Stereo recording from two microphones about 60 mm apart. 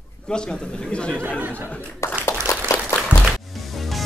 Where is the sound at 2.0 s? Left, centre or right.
Left.